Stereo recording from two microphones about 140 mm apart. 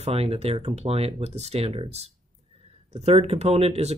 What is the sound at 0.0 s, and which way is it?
Speech, 45° right (ahead or behind).